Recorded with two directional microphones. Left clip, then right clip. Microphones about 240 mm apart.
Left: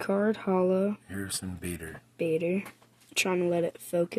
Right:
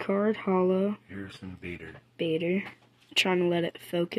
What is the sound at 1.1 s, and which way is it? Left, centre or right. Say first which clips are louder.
Speech: left 5 dB; left.